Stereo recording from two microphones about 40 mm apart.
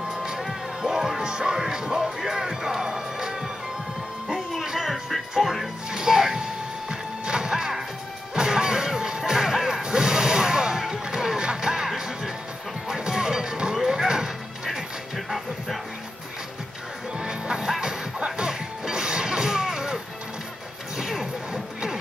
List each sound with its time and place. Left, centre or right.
0.4 s music: centre
1.2 s music: centre
4.7 s music: centre
5.9 s music: centre
8.4 s a sound: centre
9.2 s smash: centre
11.1 s music: centre
15.1 s music: centre
17.2 s music: centre
21.0 s smash: centre